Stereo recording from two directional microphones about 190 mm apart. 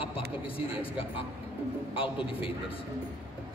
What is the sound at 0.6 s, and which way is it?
Speech, 30° left (ahead or behind).